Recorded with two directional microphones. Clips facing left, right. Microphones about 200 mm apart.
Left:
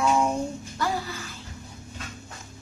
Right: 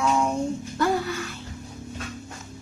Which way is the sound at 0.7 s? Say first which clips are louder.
Right 6 dB; 55° right (ahead or behind).